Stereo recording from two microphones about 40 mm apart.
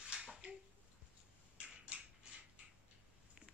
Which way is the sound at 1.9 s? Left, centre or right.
Right.